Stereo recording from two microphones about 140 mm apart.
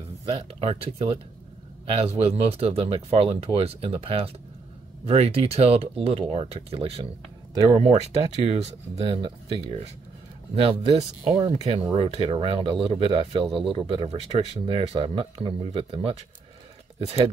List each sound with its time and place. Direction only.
0.2 s speech: 45° right (ahead or behind)
2.1 s speech: 45° right (ahead or behind)